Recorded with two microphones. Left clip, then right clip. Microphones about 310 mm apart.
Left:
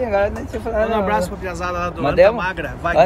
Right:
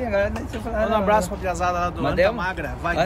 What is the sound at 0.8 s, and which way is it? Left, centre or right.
A man's voice, centre.